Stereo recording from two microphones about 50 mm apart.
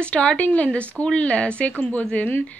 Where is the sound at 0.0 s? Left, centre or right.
Left.